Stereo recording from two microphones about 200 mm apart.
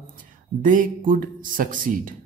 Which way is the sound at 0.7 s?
40° right (ahead or behind).